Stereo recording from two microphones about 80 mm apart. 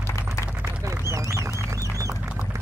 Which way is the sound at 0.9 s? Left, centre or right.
Right.